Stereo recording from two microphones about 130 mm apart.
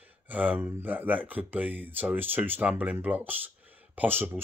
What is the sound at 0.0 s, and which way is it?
Speech, 10° right (ahead or behind).